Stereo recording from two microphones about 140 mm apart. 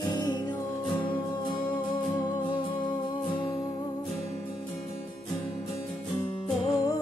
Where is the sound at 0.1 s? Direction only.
30° left (ahead or behind).